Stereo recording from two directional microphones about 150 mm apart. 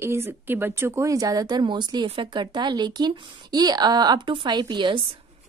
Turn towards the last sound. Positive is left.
turn(degrees=-30)  # may be behind; listen again after turning